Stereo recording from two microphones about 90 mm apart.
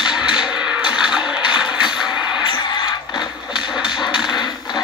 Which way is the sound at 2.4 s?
60° left (ahead or behind).